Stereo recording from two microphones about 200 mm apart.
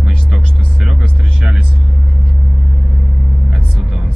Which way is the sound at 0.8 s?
Centre (ahead or behind).